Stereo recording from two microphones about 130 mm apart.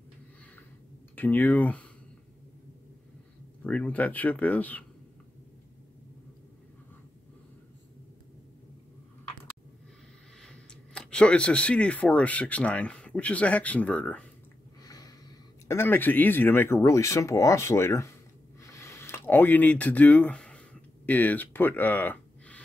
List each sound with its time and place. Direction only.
1.1 s speech: 15° left (ahead or behind)
3.6 s speech: 10° left (ahead or behind)
10.4 s speech: 5° left (ahead or behind)
14.8 s a sound: 25° left (ahead or behind)
15.7 s speech: 15° left (ahead or behind)
18.6 s a sound: 20° left (ahead or behind)